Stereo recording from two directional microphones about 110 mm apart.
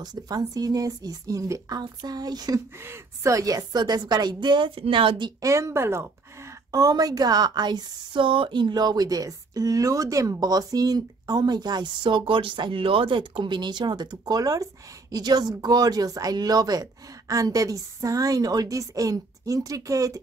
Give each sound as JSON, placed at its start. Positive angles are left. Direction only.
{"t": 0.0, "sound": "a woman's voice", "side_deg": -35}
{"t": 2.8, "sound": "a woman's voice", "side_deg": -25}
{"t": 5.4, "sound": "speech", "side_deg": -25}
{"t": 6.7, "sound": "a woman's voice", "side_deg": -35}